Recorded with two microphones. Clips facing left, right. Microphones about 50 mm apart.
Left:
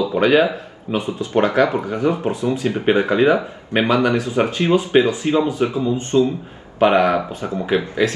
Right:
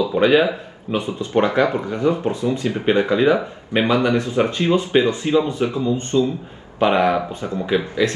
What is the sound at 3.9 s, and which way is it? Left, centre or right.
Speech, left.